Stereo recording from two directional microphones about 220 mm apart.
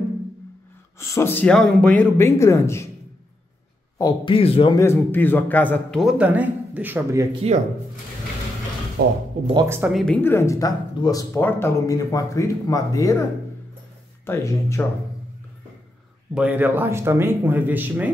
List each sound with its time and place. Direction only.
0.9 s speech: 10° left (ahead or behind)
4.0 s speech: 20° left (ahead or behind)
4.7 s a man's voice: 10° left (ahead or behind); by 7.2 s 10° right (ahead or behind)
9.0 s speech: 45° right (ahead or behind)
9.7 s speech: 5° right (ahead or behind); by 13.2 s 15° left (ahead or behind)
14.2 s speech: 10° left (ahead or behind)
16.3 s speech: 5° right (ahead or behind)